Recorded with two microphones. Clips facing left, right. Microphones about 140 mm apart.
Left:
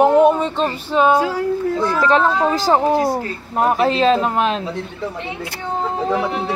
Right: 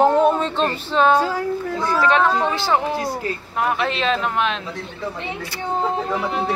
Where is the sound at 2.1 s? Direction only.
35° left (ahead or behind).